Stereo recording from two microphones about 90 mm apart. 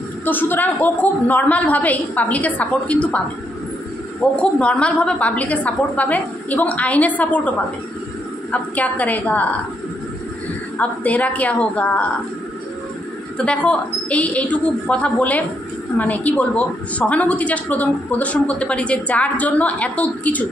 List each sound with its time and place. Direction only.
0.2 s a woman's voice: 20° left (ahead or behind)
4.4 s a woman's voice: 10° left (ahead or behind)
10.8 s a woman's voice: 15° left (ahead or behind)
13.5 s a woman's voice: 15° left (ahead or behind)